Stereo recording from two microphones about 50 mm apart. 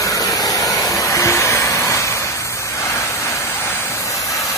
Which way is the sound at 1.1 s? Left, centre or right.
Left.